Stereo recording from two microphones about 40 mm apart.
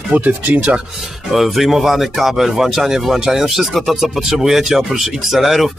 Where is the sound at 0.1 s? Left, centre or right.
Right.